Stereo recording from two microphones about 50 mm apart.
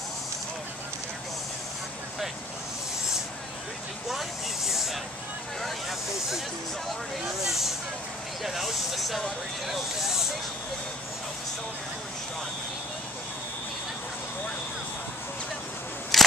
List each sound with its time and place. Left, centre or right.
4.1 s speech: centre
7.4 s speech: centre
16.1 s scissors: centre